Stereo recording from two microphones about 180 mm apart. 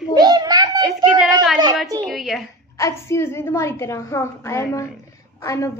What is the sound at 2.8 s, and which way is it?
A woman's voice, 15° left (ahead or behind).